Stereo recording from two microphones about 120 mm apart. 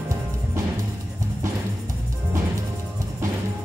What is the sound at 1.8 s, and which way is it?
Music, 25° right (ahead or behind).